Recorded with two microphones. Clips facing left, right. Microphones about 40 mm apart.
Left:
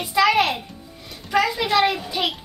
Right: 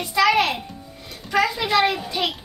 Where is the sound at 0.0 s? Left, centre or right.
Centre.